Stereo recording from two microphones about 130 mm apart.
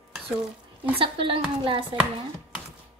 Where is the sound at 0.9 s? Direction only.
45° right (ahead or behind).